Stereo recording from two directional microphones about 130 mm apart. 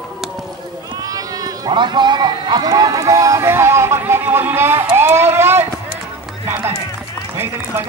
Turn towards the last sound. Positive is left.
turn(degrees=-20)  # may be behind; listen again after turning